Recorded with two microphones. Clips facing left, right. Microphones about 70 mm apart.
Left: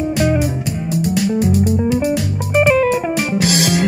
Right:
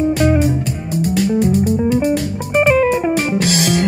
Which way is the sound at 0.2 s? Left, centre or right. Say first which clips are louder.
Left 1 dB; centre.